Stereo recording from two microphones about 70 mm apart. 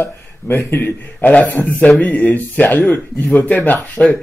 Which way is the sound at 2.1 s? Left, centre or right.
Left.